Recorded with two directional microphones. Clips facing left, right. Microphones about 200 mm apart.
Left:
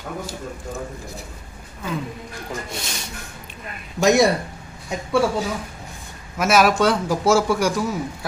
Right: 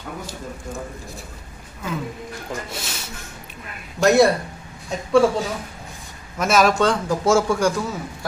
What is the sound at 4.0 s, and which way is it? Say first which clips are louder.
Speech: right 1 dB; 20° left (ahead or behind).